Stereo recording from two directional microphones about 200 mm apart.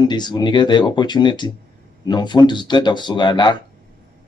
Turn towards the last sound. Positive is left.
turn(degrees=20)  # may be behind; listen again after turning